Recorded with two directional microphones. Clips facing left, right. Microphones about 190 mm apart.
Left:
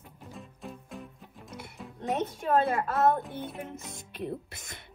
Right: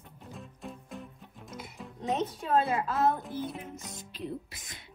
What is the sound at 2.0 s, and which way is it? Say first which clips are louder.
A woman's voice: even; 55° left (ahead or behind).